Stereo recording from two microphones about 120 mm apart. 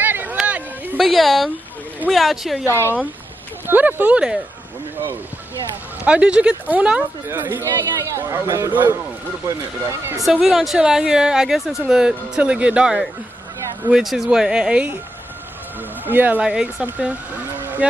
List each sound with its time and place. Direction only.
0.0 s a sound: 15° right (ahead or behind)
0.9 s speech: centre (ahead or behind)
2.7 s speech: 20° left (ahead or behind)
3.6 s speech: 15° right (ahead or behind)
6.0 s speech: 10° right (ahead or behind)
10.2 s speech: centre (ahead or behind)
16.1 s speech: 15° right (ahead or behind)
17.6 s a sound: 15° right (ahead or behind)